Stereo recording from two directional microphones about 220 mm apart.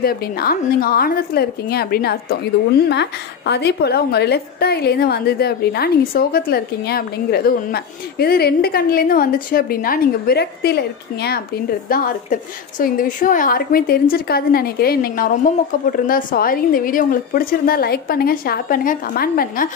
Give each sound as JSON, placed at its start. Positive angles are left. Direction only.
{"t": 0.0, "sound": "a woman's voice", "side_deg": 45}